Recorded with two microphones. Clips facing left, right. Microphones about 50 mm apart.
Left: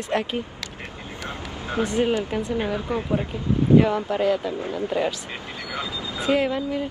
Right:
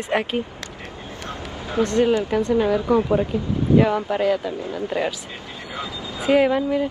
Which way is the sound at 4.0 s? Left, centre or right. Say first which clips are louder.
Right 1 dB; centre.